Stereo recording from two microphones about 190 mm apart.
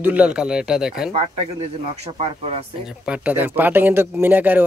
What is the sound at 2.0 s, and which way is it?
Speech, 30° right (ahead or behind).